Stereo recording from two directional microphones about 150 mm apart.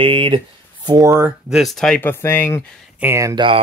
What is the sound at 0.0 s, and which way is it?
Speech, 35° right (ahead or behind).